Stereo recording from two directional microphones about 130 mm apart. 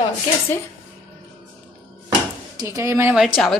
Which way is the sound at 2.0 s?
25° right (ahead or behind).